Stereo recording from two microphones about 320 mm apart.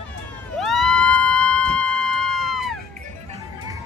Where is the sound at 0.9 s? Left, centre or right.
Right.